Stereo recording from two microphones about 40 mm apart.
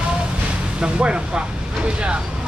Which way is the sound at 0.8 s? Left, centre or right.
Right.